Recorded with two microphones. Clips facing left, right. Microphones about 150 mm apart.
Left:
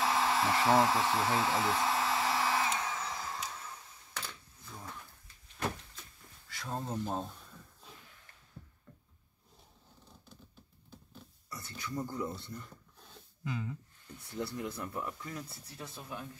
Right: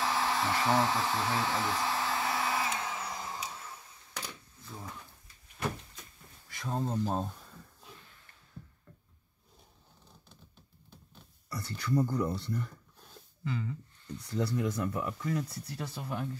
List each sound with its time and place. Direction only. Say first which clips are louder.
0.0 s hair dryer: left 1 dB; centre (ahead or behind)
4.1 s a sound: right 2 dB; 10° right (ahead or behind)
6.5 s a sound: right 3 dB; 20° right (ahead or behind)
11.4 s speech: right 7 dB; 70° right (ahead or behind)
13.4 s speech: right 2 dB; 5° left (ahead or behind)
14.3 s speech: right 6 dB; 90° right; by 16.3 s 75° right (ahead or behind)